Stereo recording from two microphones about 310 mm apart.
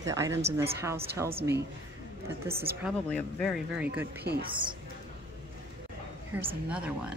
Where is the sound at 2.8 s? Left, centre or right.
Centre.